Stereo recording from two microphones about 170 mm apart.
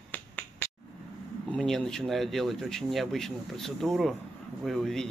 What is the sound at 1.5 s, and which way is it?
Speech, 5° left (ahead or behind).